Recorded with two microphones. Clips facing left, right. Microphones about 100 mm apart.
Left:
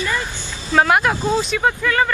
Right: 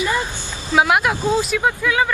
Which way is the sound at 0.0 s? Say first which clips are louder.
Right 2 dB; 15° right (ahead or behind).